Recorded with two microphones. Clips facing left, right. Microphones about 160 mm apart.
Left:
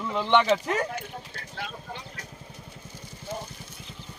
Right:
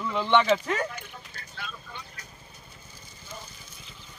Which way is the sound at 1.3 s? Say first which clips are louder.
Left 4 dB; 85° left.